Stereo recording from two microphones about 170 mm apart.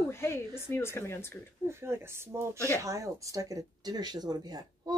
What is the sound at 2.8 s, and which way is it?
Speech, 20° right (ahead or behind).